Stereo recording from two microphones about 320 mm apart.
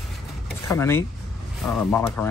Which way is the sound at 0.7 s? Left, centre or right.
Centre.